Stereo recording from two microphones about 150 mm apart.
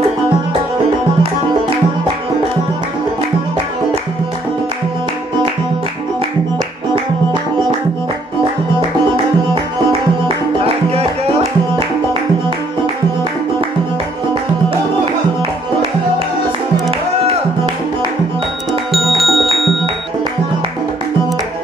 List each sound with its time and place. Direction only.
10.2 s music: 40° right (ahead or behind)
18.7 s music: centre (ahead or behind)